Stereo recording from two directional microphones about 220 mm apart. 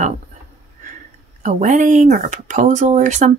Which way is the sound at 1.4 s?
35° right (ahead or behind).